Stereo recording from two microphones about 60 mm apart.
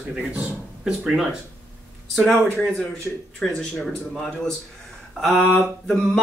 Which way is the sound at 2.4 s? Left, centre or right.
Centre.